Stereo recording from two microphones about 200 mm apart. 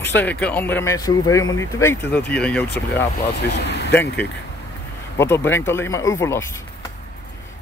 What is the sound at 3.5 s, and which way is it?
Vehicle, 60° left (ahead or behind).